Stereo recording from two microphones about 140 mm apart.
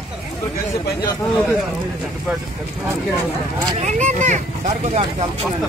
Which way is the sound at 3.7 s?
55° right (ahead or behind).